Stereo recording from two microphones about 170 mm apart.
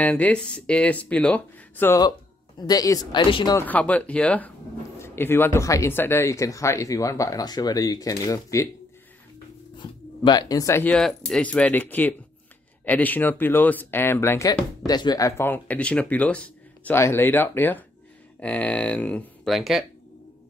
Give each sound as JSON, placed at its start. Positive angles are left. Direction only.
{"t": 0.0, "sound": "speech", "side_deg": 5}
{"t": 2.6, "sound": "speech", "side_deg": 20}
{"t": 3.5, "sound": "speech", "side_deg": 10}
{"t": 9.8, "sound": "speech", "side_deg": 25}
{"t": 14.9, "sound": "speech", "side_deg": 25}